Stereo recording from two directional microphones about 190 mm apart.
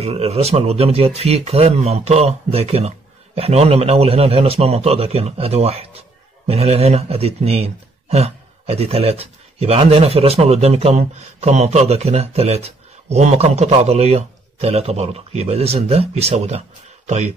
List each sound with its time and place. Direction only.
0.0 s a man's voice: 35° right (ahead or behind)